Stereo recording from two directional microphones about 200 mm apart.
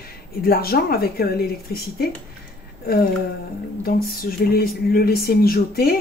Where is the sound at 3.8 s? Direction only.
50° left (ahead or behind).